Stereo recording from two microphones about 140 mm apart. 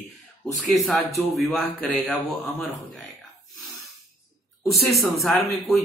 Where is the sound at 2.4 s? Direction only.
Centre (ahead or behind).